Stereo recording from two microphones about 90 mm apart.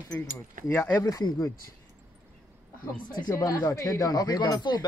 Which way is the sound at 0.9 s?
40° left (ahead or behind).